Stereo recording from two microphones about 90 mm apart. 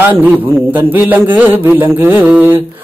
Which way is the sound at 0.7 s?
20° right (ahead or behind).